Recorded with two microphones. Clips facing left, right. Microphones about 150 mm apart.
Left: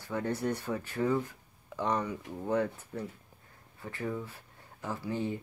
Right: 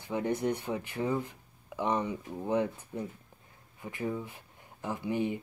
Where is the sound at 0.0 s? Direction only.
15° right (ahead or behind).